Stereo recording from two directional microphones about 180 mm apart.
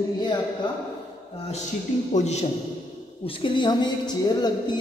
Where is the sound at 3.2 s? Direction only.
25° left (ahead or behind).